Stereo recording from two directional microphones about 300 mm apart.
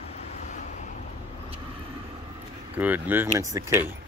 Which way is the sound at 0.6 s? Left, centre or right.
Left.